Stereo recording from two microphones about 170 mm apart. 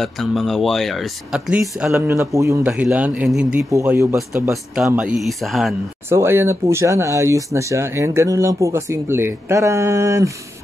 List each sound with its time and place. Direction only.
0.0 s speech: centre (ahead or behind)
6.0 s speech: 15° right (ahead or behind)